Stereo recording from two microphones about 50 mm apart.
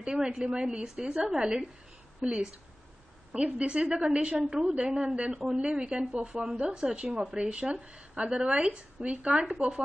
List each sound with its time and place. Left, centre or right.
0.0 s a woman's voice: centre